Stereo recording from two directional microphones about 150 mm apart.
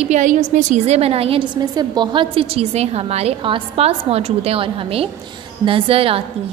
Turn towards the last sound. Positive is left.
turn(degrees=-40)  # may be behind; listen again after turning